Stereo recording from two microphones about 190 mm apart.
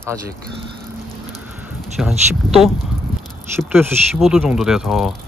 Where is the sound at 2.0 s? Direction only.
5° right (ahead or behind).